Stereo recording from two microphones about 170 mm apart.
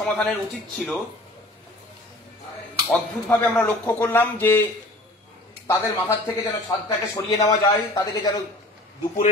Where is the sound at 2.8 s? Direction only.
5° left (ahead or behind).